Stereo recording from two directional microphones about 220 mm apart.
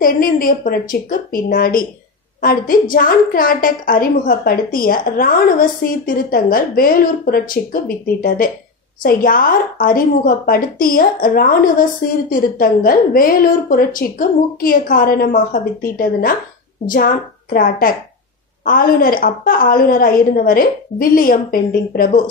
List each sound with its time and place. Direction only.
0.0 s a woman's voice: 40° left (ahead or behind)